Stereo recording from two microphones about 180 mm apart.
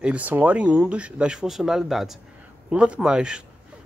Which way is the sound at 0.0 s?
10° right (ahead or behind).